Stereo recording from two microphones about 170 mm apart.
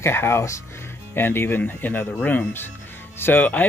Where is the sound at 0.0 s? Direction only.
15° left (ahead or behind).